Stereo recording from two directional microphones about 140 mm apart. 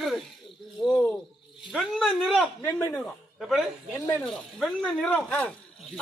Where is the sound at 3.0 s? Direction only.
Centre (ahead or behind).